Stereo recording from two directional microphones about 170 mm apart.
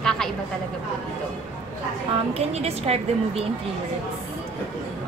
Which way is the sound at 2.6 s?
35° right (ahead or behind).